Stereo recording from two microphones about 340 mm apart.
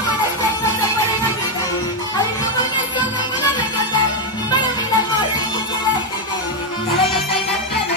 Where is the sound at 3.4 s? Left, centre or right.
Centre.